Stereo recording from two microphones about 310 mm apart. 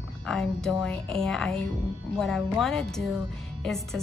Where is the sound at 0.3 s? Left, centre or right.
Centre.